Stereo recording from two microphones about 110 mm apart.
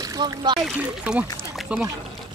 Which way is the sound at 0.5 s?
5° right (ahead or behind).